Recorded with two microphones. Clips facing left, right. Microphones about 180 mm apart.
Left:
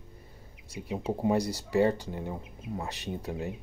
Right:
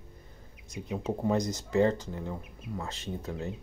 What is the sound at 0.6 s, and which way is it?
Speech, 30° left (ahead or behind).